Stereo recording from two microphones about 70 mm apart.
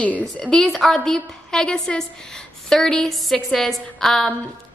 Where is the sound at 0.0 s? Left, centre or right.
Centre.